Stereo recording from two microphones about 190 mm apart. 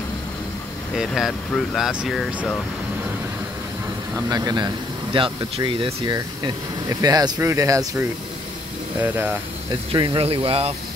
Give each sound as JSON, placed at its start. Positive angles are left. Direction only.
{"t": 0.9, "sound": "speech", "side_deg": 0}
{"t": 4.3, "sound": "speech", "side_deg": -20}
{"t": 9.7, "sound": "speech", "side_deg": -25}